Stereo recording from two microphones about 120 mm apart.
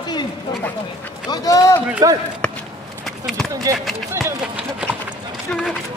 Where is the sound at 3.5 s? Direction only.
25° right (ahead or behind).